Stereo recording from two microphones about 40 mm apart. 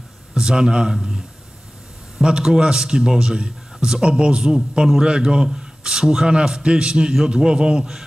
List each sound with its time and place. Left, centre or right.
0.3 s speech: centre
2.2 s a man's voice: centre